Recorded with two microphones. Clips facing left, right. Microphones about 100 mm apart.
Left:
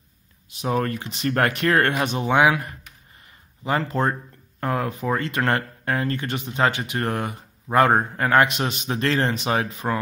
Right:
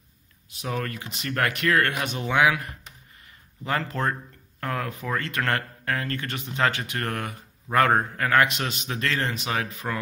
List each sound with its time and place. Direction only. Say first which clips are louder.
0.6 s a man's voice: left 7 dB; 30° left (ahead or behind)